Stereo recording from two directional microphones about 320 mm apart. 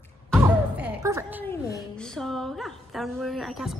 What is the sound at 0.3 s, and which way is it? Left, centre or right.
Music, centre.